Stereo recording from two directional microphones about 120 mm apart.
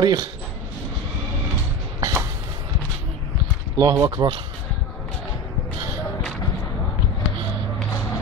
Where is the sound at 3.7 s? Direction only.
25° right (ahead or behind).